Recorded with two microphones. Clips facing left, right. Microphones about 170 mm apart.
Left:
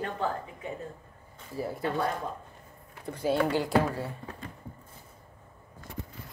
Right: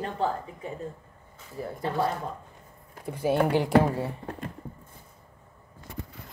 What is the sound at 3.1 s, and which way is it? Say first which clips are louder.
Speech: right 3 dB; 15° right (ahead or behind).